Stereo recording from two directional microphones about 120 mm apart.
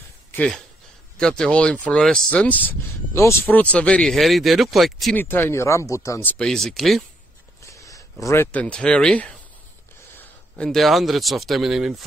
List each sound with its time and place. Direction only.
1.1 s speech: 5° left (ahead or behind)
5.1 s speech: 15° left (ahead or behind)
6.3 s speech: 5° left (ahead or behind)
7.6 s a sound: 25° left (ahead or behind)
8.5 s speech: 10° left (ahead or behind)
10.6 s speech: centre (ahead or behind)